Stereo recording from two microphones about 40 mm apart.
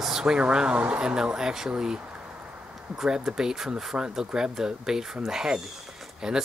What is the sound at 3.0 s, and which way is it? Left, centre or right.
Speech, centre.